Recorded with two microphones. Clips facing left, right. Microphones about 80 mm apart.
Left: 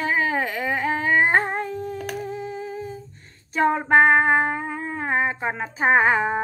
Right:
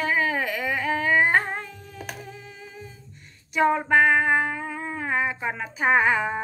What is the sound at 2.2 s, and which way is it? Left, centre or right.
Humming, left.